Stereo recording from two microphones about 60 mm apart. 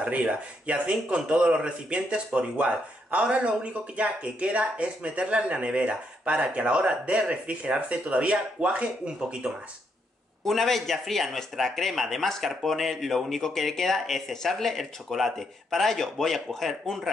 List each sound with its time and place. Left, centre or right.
0.0 s speech: right
10.4 s speech: centre